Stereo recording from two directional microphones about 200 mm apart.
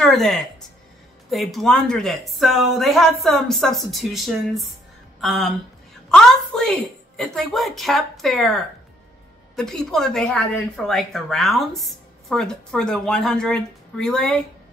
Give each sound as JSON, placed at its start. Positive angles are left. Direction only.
{"t": 0.0, "sound": "a woman's voice", "side_deg": 0}